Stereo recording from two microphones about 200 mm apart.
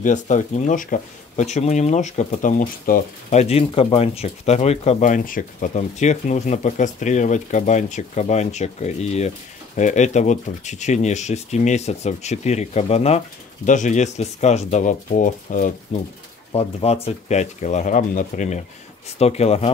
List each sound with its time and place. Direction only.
0.0 s speech: 40° left (ahead or behind)